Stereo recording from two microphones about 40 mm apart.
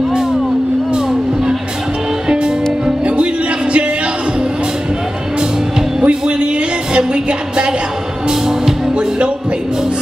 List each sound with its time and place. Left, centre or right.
2.2 s music: right
6.0 s music: right
8.3 s music: centre